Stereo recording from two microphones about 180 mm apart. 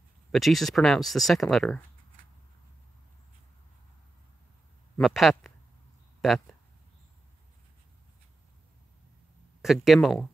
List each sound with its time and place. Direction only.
0.3 s speech: centre (ahead or behind)
5.0 s speech: centre (ahead or behind)
9.6 s speech: centre (ahead or behind)